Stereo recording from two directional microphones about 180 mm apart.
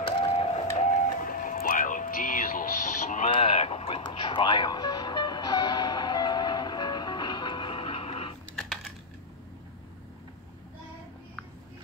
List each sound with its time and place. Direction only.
0.0 s music: 30° left (ahead or behind)
0.7 s music: 45° left (ahead or behind)
3.3 s music: 35° left (ahead or behind)